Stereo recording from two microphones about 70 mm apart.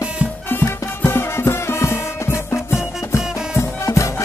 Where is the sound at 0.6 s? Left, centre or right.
Left.